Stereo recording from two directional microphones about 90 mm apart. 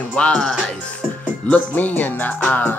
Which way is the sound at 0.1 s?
10° left (ahead or behind).